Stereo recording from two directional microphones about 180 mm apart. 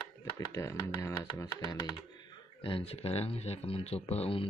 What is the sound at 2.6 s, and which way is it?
Speech, 30° left (ahead or behind).